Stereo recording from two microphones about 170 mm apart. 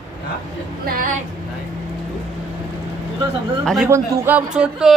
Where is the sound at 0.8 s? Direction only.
55° right (ahead or behind).